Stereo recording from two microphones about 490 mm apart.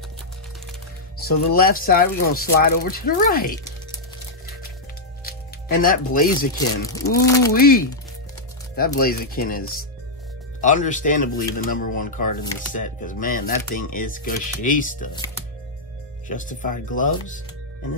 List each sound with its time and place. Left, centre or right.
1.1 s speech: centre
5.8 s speech: centre
6.9 s speech: centre
7.5 s speech: centre